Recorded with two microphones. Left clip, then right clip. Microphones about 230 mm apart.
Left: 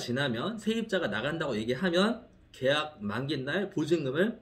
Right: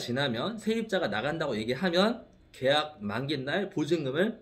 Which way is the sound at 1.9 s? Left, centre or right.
Centre.